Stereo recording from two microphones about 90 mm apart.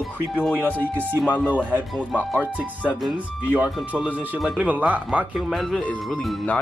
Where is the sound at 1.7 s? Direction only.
15° right (ahead or behind).